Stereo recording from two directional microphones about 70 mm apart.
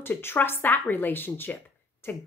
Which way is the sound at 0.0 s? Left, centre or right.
Left.